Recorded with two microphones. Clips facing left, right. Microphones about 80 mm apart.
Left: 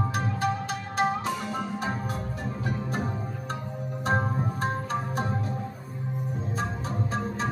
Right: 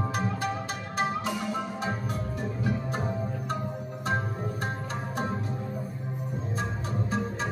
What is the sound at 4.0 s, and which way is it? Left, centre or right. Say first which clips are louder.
Music: left 4 dB; left.